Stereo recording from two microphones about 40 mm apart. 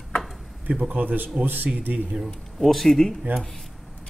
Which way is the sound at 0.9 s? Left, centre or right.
Right.